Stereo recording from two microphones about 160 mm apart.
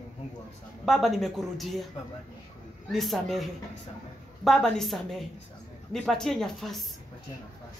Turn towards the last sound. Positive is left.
turn(degrees=0)  # may be behind; listen again after turning